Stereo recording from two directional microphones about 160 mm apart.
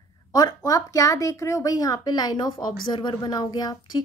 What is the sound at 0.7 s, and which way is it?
A woman's voice, 20° left (ahead or behind).